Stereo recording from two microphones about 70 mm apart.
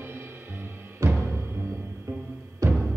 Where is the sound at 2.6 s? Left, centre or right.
Right.